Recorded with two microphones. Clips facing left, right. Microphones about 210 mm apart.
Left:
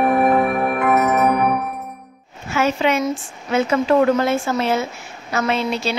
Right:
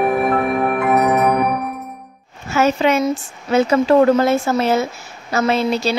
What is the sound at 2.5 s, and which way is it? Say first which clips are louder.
Speech: right 3 dB; 40° right (ahead or behind).